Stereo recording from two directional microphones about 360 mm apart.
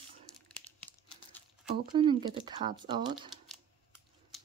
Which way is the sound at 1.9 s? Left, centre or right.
Centre.